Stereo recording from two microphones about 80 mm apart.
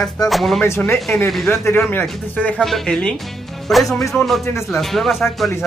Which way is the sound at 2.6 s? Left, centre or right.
Centre.